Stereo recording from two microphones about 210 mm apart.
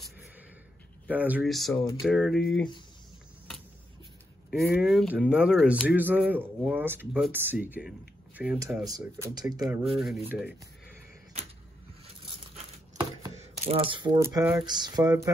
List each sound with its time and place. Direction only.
1.0 s speech: 5° right (ahead or behind)
4.5 s a man's voice: 5° right (ahead or behind); by 9.7 s 20° right (ahead or behind)
9.9 s speech: centre (ahead or behind)
12.9 s a sound: 25° right (ahead or behind)
14.7 s speech: 20° right (ahead or behind)